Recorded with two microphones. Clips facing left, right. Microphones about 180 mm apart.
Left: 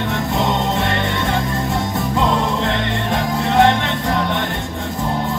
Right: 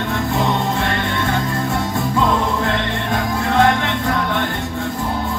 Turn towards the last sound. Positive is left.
turn(degrees=20)  # may be behind; listen again after turning